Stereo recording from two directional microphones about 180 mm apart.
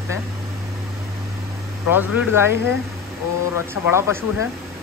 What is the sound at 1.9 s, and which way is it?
Speech, 10° right (ahead or behind).